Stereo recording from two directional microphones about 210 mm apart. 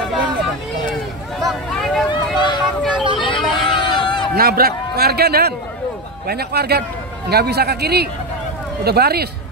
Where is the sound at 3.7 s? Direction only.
20° left (ahead or behind).